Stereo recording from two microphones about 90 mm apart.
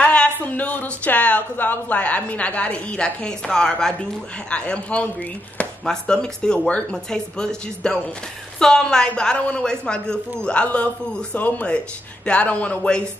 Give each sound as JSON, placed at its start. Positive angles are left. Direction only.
{"t": 0.0, "sound": "speech", "side_deg": 15}
{"t": 4.5, "sound": "chopping", "side_deg": 10}